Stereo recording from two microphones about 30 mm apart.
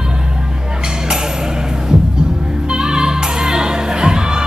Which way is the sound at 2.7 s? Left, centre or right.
Right.